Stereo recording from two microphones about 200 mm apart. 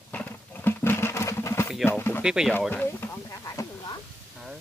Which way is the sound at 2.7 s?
10° left (ahead or behind).